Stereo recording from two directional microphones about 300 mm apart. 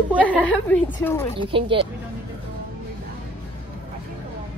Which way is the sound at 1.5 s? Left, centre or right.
Centre.